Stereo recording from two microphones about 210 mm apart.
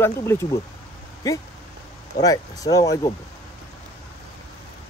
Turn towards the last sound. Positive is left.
turn(degrees=20)  # may be behind; listen again after turning